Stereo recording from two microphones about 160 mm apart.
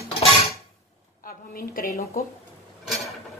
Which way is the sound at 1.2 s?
65° left (ahead or behind).